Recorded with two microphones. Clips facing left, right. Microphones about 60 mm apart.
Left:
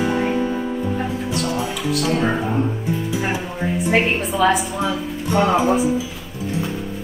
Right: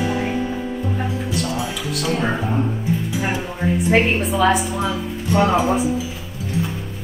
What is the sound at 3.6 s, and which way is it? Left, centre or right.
A woman's voice, centre.